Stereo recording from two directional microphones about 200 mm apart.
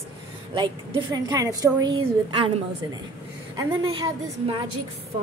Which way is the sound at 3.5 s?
20° right (ahead or behind).